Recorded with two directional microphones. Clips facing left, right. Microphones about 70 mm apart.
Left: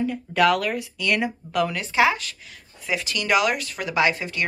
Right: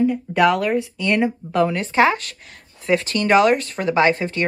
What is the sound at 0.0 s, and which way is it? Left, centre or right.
Speech, centre.